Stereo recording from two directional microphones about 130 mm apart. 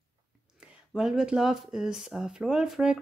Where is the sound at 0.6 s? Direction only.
5° right (ahead or behind).